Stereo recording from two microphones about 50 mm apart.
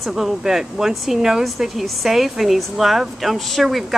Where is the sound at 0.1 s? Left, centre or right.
Centre.